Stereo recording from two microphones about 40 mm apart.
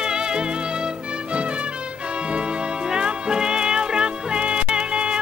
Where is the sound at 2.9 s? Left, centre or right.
Right.